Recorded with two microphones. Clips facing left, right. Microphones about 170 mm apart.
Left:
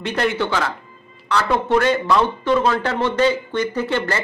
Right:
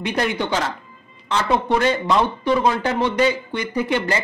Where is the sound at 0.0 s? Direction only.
15° right (ahead or behind).